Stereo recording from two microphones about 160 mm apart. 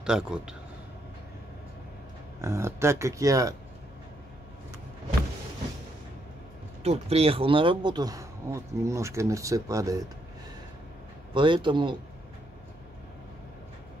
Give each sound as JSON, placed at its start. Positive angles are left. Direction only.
{"t": 0.0, "sound": "speech", "side_deg": -5}
{"t": 2.4, "sound": "speech", "side_deg": -15}
{"t": 6.8, "sound": "speech", "side_deg": -40}
{"t": 11.3, "sound": "speech", "side_deg": -30}